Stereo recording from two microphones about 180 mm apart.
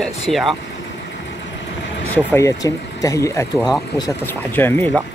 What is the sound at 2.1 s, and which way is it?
Speech, 15° left (ahead or behind).